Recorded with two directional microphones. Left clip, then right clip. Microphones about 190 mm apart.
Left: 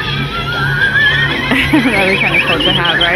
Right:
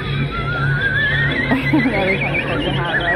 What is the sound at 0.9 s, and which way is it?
Music, 5° right (ahead or behind).